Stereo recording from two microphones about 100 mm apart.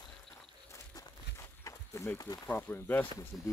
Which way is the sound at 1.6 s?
30° left (ahead or behind).